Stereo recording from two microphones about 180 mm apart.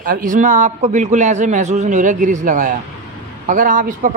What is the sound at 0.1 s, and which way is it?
A man's voice, 50° right (ahead or behind).